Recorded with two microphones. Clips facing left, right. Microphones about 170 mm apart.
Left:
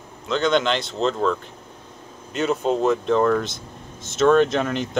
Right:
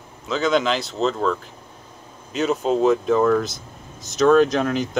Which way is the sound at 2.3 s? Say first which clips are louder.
Right 1 dB; centre (ahead or behind).